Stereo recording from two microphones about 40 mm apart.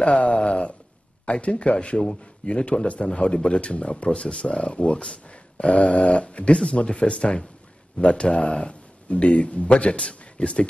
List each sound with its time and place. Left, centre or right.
0.0 s speech: left